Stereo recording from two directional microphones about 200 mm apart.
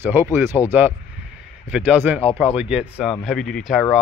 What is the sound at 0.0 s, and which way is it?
Speech, 10° right (ahead or behind).